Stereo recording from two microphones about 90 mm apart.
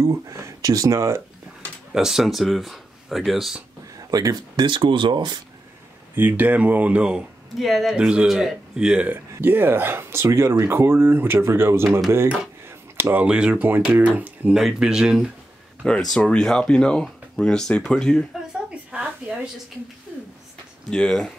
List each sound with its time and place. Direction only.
0.6 s speech: 40° right (ahead or behind)
2.0 s speech: 5° right (ahead or behind)
3.9 s a sound: 40° right (ahead or behind)
4.6 s speech: 65° right (ahead or behind)
6.1 s speech: 20° right (ahead or behind)
7.5 s speech: centre (ahead or behind); by 14.5 s 20° right (ahead or behind)
14.5 s speech: 5° right (ahead or behind)
15.8 s speech: 5° left (ahead or behind)
18.7 s a sound: 10° right (ahead or behind)
20.9 s speech: 5° left (ahead or behind)